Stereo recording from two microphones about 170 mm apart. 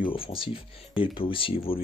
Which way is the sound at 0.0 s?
30° left (ahead or behind).